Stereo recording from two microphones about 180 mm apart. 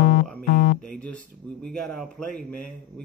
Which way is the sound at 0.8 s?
5° left (ahead or behind).